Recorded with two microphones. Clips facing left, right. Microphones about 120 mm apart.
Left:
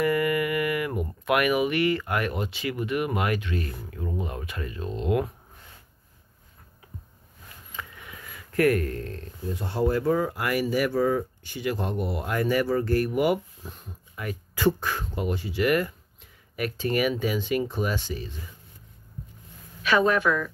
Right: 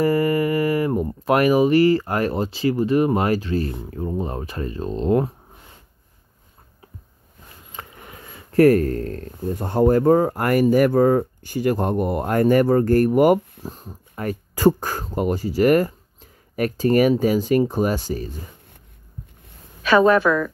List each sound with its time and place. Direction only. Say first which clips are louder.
0.0 s speech: right 5 dB; 35° right (ahead or behind)
7.7 s speech: right 2 dB; 40° right (ahead or behind)
19.8 s speech: right 7 dB; 35° right (ahead or behind)